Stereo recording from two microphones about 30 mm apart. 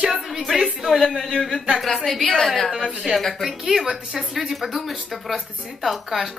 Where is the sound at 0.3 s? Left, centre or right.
Centre.